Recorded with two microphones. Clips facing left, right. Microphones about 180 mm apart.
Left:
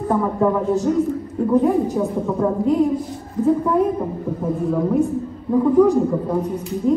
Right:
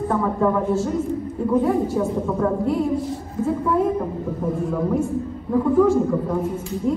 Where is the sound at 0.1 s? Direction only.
20° left (ahead or behind).